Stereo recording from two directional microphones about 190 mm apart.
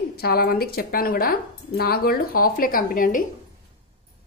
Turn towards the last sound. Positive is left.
turn(degrees=45)  # may be behind; listen again after turning